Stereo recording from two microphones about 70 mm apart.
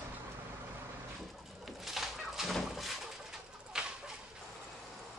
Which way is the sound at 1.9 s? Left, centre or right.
Centre.